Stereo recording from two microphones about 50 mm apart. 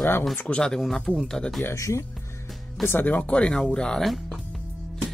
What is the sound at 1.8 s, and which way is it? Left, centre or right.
Speech, left.